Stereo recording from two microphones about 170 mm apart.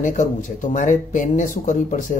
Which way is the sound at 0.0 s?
50° left (ahead or behind).